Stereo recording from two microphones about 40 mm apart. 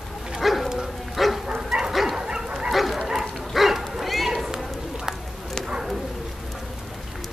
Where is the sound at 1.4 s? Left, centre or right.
Centre.